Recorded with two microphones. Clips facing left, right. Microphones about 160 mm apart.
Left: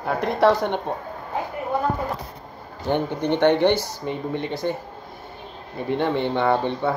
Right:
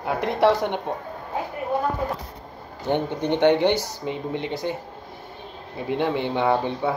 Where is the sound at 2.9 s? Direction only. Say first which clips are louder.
Left 1 dB; 15° right (ahead or behind).